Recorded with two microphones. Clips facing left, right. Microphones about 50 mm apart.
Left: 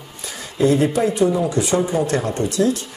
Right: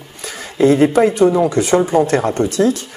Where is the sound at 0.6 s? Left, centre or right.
Right.